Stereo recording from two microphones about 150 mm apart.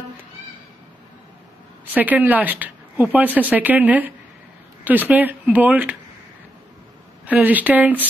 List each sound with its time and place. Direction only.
2.0 s speech: 10° right (ahead or behind)
7.2 s speech: 10° right (ahead or behind)